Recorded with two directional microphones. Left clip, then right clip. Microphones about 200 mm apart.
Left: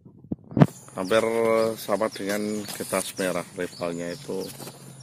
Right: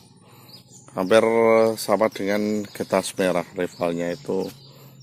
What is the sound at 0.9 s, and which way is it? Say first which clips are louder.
Speech: right 5 dB; 50° right (ahead or behind).